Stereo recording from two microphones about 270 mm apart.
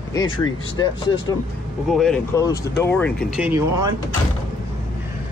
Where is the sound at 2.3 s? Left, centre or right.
Centre.